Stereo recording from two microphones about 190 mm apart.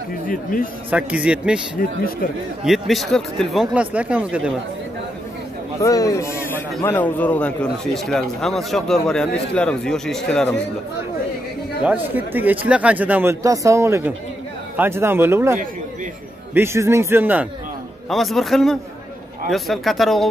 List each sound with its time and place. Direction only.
0.3 s a man's voice: 45° left (ahead or behind)
0.8 s speech: 5° right (ahead or behind)
2.6 s speech: centre (ahead or behind)
5.8 s a man's voice: 15° left (ahead or behind)
11.8 s speech: 10° right (ahead or behind)
16.5 s speech: 15° right (ahead or behind)